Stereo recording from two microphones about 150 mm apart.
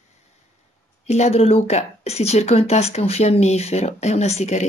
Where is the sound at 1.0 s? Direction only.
50° left (ahead or behind).